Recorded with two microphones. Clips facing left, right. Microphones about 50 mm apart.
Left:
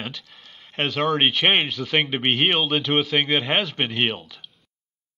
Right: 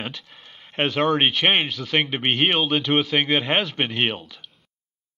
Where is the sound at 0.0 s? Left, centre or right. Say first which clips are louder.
Right 1 dB; centre.